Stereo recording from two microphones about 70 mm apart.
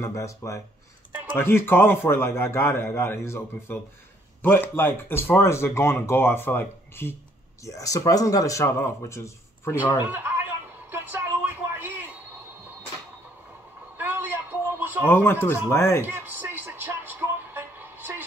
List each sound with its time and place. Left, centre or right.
0.0 s speech: left
1.3 s speech: left
7.6 s speech: left
8.6 s speech: left
9.9 s a sound: right
13.9 s a sound: right
15.0 s speech: left
16.1 s music: right